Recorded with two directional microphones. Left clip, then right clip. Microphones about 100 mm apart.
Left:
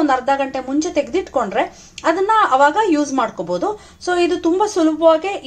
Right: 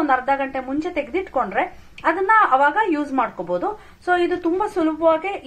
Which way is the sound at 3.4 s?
10° left (ahead or behind).